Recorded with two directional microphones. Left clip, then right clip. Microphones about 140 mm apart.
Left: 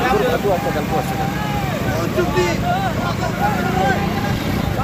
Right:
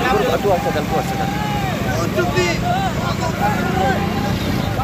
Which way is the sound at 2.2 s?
60° left (ahead or behind).